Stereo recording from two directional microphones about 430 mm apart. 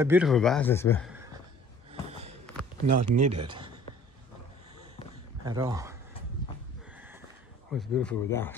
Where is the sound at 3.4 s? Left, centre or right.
Centre.